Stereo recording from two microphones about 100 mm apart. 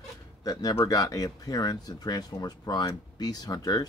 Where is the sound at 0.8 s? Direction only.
35° left (ahead or behind).